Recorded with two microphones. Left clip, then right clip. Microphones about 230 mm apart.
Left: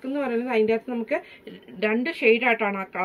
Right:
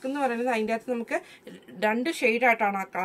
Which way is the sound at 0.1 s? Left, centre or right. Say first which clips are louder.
Left 2 dB; right.